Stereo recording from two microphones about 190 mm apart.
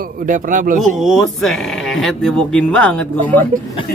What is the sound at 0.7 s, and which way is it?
A man's voice, centre (ahead or behind).